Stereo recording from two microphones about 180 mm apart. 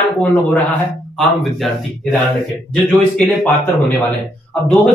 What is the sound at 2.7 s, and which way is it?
Speech, centre (ahead or behind).